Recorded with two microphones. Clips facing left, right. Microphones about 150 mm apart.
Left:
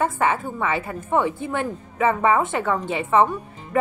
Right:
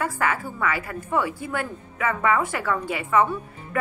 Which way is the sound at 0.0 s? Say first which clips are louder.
Left 4 dB; 25° left (ahead or behind).